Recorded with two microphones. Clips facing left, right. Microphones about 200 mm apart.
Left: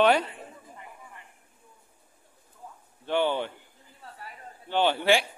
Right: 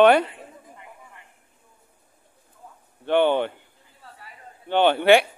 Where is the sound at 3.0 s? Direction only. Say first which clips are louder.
Right 6 dB; 60° right (ahead or behind).